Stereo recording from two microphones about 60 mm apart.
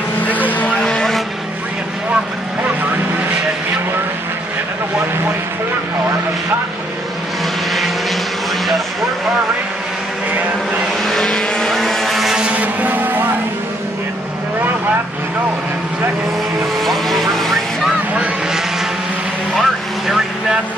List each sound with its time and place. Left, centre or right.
0.2 s vehicle: left
0.7 s vehicle: centre
11.1 s vehicle: centre
12.5 s music: right
16.8 s vehicle: centre
18.1 s vehicle: centre
19.5 s vehicle: centre